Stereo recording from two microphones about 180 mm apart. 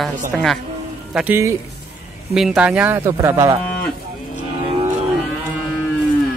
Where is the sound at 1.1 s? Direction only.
10° right (ahead or behind).